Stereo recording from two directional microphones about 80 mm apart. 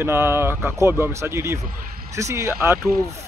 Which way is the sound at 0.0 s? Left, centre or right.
Right.